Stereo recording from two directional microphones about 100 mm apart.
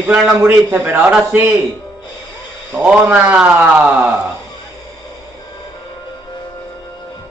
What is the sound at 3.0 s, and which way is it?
Speech, 15° right (ahead or behind).